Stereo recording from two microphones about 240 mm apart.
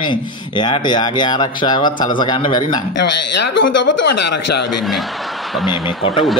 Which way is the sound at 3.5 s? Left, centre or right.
Left.